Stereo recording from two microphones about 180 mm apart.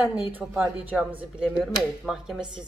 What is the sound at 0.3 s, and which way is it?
A woman's voice, 10° right (ahead or behind).